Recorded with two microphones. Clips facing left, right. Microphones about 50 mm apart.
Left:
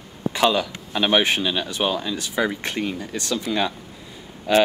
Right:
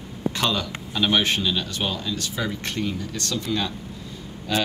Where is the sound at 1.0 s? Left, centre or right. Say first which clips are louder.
Left 2 dB; left.